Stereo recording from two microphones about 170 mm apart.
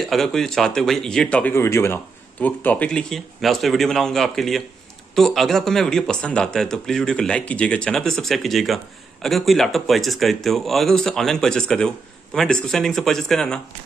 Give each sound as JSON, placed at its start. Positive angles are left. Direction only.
{"t": 0.0, "sound": "speech", "side_deg": 0}